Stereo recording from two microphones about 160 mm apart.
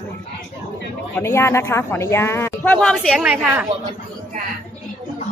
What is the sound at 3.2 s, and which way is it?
Speech, 10° right (ahead or behind).